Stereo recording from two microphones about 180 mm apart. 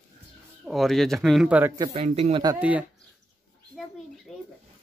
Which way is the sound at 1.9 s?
35° right (ahead or behind).